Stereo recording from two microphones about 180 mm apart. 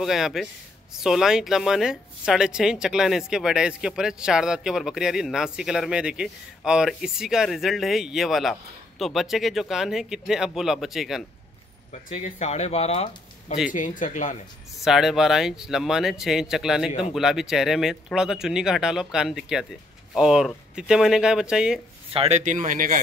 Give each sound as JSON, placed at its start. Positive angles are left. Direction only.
{"t": 0.0, "sound": "a woman's voice", "side_deg": 0}
{"t": 11.9, "sound": "speech", "side_deg": 40}
{"t": 13.7, "sound": "speech", "side_deg": 45}
{"t": 14.8, "sound": "a woman's voice", "side_deg": 0}
{"t": 22.1, "sound": "speech", "side_deg": -35}